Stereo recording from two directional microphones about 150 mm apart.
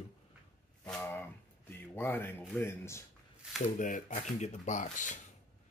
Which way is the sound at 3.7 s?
60° left (ahead or behind).